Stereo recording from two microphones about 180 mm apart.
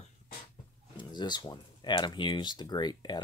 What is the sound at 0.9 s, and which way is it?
Speech, 25° left (ahead or behind).